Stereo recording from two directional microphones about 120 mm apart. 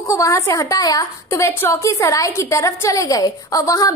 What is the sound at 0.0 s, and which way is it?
A woman's voice, 25° left (ahead or behind).